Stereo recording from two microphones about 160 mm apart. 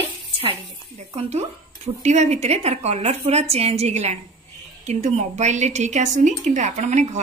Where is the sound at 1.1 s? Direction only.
45° right (ahead or behind).